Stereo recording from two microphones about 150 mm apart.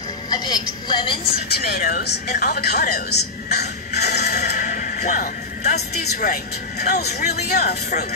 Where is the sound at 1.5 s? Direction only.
85° left.